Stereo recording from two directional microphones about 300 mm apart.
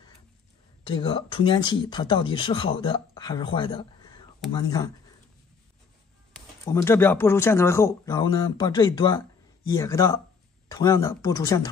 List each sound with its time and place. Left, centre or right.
0.8 s speech: centre
6.3 s speech: centre